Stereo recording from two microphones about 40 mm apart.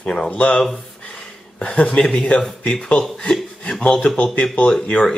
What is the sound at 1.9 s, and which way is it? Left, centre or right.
A man's voice, centre.